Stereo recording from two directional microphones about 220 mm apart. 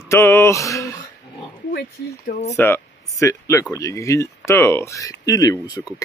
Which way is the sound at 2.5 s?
10° left (ahead or behind).